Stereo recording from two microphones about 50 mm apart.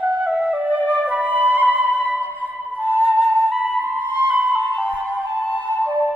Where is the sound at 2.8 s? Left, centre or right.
Right.